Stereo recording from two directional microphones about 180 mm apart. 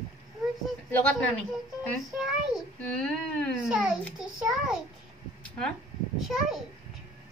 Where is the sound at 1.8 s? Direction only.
Centre (ahead or behind).